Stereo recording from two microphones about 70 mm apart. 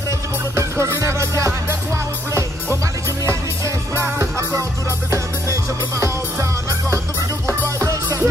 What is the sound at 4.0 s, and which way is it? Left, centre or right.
Music, right.